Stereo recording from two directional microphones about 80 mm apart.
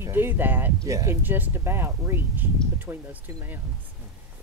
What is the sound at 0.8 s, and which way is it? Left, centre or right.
Speech, right.